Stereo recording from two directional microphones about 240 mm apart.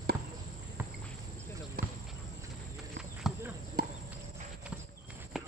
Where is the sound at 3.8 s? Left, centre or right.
Right.